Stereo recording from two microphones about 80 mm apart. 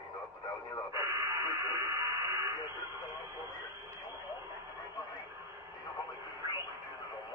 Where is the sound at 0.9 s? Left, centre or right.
Right.